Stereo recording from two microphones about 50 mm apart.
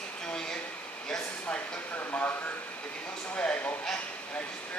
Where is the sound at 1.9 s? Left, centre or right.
Left.